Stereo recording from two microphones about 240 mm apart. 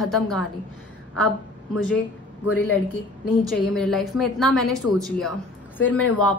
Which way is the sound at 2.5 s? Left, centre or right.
Centre.